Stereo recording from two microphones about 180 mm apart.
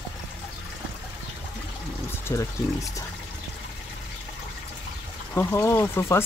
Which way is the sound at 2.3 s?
15° left (ahead or behind).